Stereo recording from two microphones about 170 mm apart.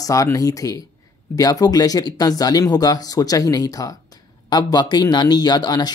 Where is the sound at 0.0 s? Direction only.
20° left (ahead or behind).